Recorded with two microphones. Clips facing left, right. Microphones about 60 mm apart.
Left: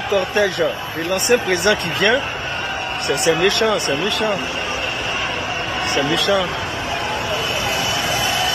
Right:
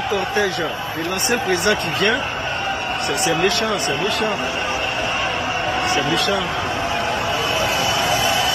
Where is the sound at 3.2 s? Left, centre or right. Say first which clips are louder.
Left 4 dB; left.